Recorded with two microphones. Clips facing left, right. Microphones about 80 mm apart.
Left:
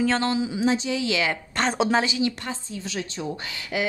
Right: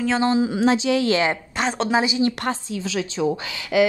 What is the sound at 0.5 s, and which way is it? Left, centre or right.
Speech, right.